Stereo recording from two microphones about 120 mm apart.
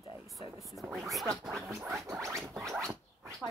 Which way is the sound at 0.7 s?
Centre (ahead or behind).